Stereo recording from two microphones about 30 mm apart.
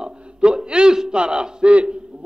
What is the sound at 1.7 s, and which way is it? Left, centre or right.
Speech, right.